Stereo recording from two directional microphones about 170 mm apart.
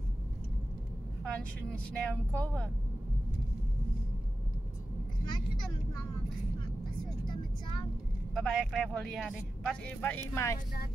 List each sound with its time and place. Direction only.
1.2 s speech: 5° left (ahead or behind)
8.4 s speech: centre (ahead or behind)